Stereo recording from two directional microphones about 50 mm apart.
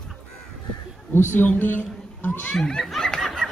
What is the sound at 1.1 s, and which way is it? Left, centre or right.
A woman's voice, left.